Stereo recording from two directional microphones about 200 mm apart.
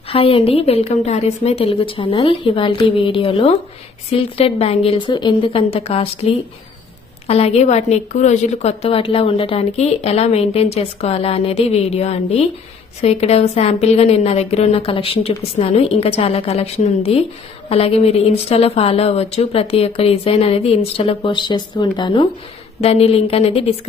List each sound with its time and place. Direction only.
0.1 s a woman's voice: 30° left (ahead or behind)